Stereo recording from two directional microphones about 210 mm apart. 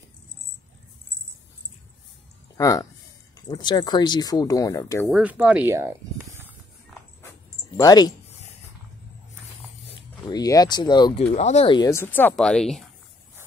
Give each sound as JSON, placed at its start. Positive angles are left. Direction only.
{"t": 2.5, "sound": "speech", "side_deg": 15}
{"t": 5.1, "sound": "speech", "side_deg": -5}
{"t": 6.2, "sound": "a sound", "side_deg": 0}
{"t": 7.7, "sound": "speech", "side_deg": 20}
{"t": 10.2, "sound": "speech", "side_deg": 20}
{"t": 11.3, "sound": "speech", "side_deg": 30}